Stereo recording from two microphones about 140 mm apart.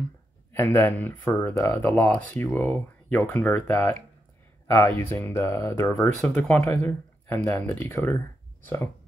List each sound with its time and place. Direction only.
0.5 s speech: 15° left (ahead or behind)
6.6 s speech: 15° left (ahead or behind)